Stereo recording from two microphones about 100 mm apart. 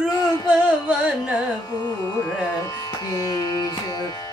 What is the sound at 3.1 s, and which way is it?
Music, 40° left (ahead or behind).